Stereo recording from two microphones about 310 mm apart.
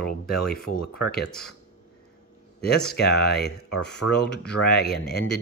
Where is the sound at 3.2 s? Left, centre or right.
Left.